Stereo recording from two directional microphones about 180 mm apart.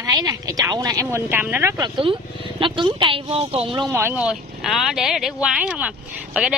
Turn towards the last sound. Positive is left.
turn(degrees=-5)  # may be behind; listen again after turning